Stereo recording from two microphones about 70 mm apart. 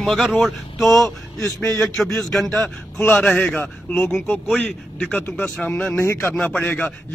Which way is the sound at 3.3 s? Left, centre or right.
Left.